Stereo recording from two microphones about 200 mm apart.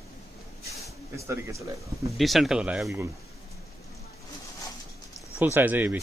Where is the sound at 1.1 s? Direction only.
15° right (ahead or behind).